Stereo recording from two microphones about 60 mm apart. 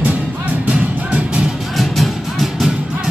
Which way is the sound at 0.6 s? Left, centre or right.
Centre.